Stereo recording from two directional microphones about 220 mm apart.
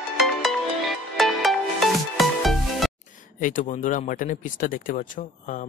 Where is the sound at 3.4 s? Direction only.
35° left (ahead or behind).